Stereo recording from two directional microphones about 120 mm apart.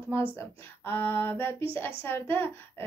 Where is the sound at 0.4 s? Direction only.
20° left (ahead or behind).